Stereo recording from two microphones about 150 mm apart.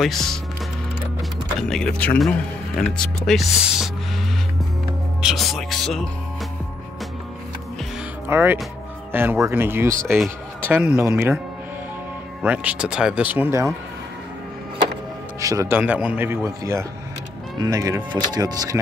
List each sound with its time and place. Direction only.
0.0 s speech: centre (ahead or behind)
1.6 s speech: 5° left (ahead or behind)
5.2 s music: centre (ahead or behind)
8.3 s speech: 15° right (ahead or behind)
11.1 s speech: 15° right (ahead or behind)
12.4 s speech: 5° right (ahead or behind)
15.4 s speech: 20° right (ahead or behind)
15.8 s speech: 10° right (ahead or behind); by 18.8 s 25° right (ahead or behind)